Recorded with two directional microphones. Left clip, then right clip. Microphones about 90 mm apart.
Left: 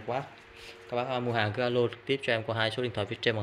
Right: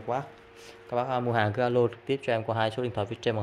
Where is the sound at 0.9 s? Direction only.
45° right (ahead or behind).